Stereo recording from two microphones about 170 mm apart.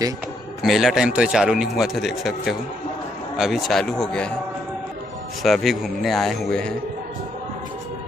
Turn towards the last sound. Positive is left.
turn(degrees=5)  # may be behind; listen again after turning